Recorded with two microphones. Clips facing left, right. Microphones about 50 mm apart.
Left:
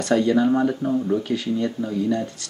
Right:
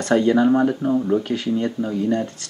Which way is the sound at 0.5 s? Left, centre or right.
Right.